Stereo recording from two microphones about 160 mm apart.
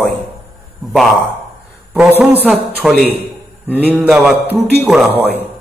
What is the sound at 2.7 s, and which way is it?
A man's voice, 5° left (ahead or behind).